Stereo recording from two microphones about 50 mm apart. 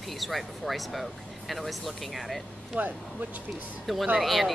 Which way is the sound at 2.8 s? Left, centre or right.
Right.